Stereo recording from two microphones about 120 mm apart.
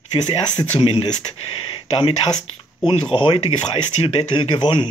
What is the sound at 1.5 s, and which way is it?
Speech, 50° left (ahead or behind).